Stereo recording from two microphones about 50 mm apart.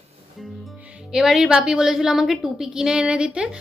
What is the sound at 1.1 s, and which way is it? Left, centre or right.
A woman's voice, centre.